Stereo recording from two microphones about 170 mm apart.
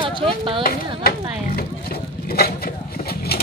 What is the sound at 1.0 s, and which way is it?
Speech, 60° left (ahead or behind).